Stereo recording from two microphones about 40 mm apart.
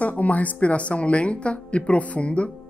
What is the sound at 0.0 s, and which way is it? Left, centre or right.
A woman's voice, left.